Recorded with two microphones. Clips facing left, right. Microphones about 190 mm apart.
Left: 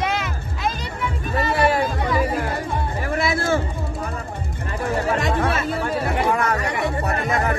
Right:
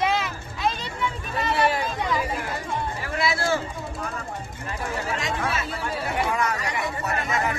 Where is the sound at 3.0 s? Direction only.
50° left (ahead or behind).